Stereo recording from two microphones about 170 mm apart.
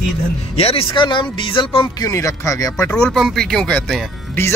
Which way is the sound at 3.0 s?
5° left (ahead or behind).